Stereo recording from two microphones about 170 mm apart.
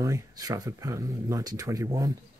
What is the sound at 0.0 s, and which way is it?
Speech, 20° right (ahead or behind).